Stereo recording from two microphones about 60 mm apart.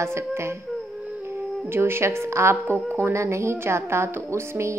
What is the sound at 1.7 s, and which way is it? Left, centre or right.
Speech, right.